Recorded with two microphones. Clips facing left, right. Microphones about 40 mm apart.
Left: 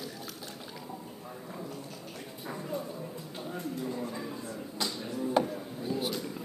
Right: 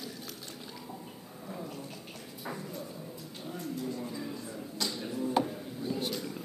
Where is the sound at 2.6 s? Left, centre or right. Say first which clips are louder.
Left 5 dB; left.